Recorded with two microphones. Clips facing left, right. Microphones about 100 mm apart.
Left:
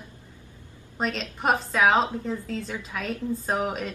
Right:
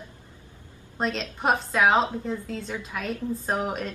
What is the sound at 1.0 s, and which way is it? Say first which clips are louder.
A woman's voice: right 1 dB; centre (ahead or behind).